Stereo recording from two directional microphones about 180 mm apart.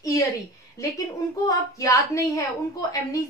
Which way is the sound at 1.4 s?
20° left (ahead or behind).